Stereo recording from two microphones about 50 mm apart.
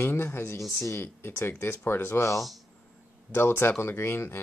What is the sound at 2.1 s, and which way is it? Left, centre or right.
Speech, left.